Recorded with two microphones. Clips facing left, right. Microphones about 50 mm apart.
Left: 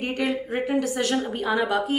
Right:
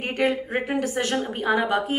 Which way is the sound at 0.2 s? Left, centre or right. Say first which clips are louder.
Right 4 dB; right.